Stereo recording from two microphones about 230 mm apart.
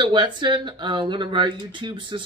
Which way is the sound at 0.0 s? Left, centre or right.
Centre.